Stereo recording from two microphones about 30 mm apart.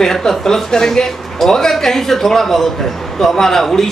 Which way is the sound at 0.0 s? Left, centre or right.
Centre.